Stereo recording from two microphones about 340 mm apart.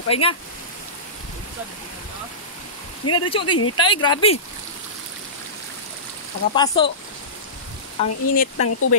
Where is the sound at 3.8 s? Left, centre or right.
Centre.